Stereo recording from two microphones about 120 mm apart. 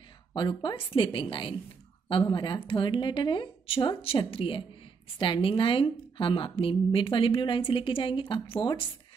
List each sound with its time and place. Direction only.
0.3 s a woman's voice: 40° left (ahead or behind)